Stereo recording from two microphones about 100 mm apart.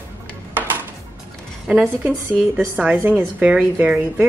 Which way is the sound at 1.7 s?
15° right (ahead or behind).